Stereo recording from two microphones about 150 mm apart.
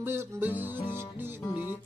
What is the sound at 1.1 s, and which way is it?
Speech, 15° right (ahead or behind).